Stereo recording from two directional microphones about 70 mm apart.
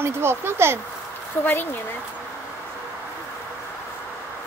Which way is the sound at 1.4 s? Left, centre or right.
Left.